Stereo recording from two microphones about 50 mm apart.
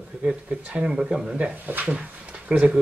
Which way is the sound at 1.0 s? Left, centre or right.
Centre.